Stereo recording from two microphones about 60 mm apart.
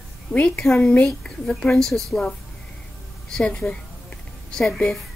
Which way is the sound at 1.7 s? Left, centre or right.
Centre.